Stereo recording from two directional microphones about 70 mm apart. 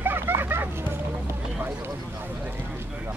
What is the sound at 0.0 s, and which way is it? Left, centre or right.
Hubbub, right.